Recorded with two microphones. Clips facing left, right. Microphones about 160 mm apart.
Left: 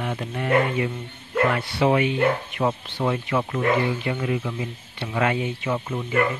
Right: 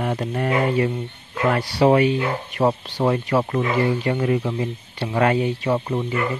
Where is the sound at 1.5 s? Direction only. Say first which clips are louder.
Right 8 dB; 40° right (ahead or behind).